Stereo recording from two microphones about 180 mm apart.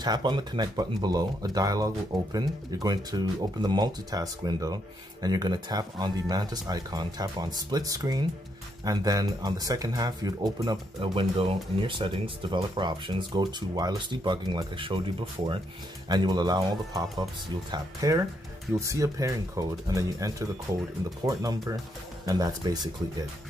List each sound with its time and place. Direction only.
0.0 s speech: 25° right (ahead or behind)